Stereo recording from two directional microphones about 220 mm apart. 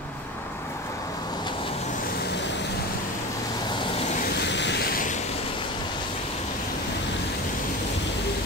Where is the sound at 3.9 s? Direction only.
30° left (ahead or behind).